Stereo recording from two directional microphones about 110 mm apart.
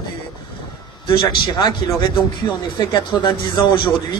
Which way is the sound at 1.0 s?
45° left (ahead or behind).